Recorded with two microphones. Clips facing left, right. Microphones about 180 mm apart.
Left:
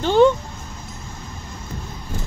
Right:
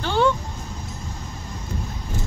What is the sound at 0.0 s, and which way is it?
Music, 20° left (ahead or behind).